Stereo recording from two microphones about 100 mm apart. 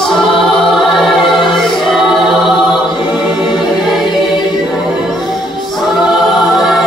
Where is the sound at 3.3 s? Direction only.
50° left (ahead or behind).